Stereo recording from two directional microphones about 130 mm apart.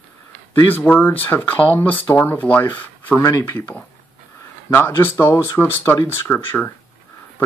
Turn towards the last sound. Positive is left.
turn(degrees=20)  # may be behind; listen again after turning